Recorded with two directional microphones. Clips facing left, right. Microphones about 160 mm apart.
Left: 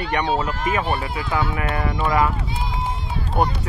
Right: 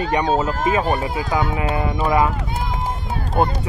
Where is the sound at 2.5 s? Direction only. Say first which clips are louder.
Right 2 dB; 50° right (ahead or behind).